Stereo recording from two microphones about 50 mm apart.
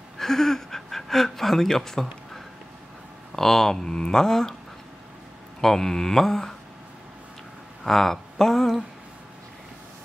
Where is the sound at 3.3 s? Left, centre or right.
Centre.